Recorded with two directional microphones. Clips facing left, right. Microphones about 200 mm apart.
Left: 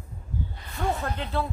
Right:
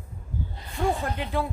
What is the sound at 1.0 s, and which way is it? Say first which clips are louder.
Speech: right 1 dB; 15° right (ahead or behind).